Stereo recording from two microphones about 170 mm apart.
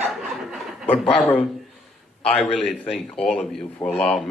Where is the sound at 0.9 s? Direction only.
30° left (ahead or behind).